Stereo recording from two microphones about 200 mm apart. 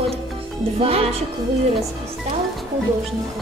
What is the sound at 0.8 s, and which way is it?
Speech, 30° right (ahead or behind).